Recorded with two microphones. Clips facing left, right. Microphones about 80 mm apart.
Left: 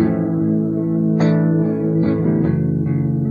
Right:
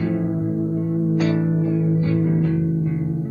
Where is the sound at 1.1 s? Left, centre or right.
Left.